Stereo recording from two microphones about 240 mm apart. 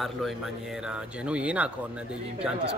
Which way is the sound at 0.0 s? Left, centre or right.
Centre.